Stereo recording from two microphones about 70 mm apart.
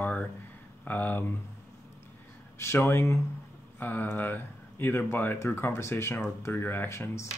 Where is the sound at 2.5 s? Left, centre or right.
Left.